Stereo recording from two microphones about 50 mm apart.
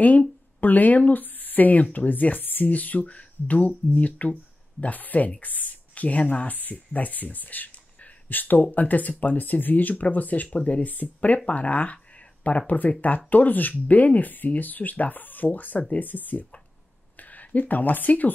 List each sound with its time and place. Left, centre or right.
0.6 s speech: left